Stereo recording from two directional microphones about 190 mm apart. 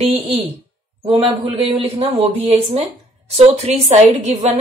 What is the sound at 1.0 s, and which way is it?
Speech, 30° right (ahead or behind).